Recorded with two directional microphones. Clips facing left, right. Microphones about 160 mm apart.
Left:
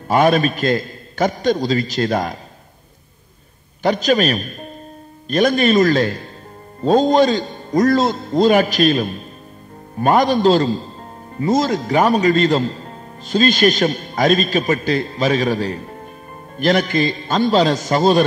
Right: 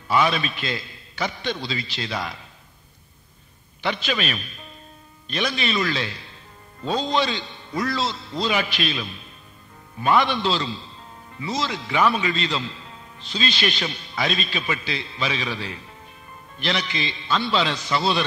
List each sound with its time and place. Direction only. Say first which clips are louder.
0.1 s a man's voice: left 7 dB; 45° left (ahead or behind)
3.8 s a man's voice: left 10 dB; 45° left (ahead or behind)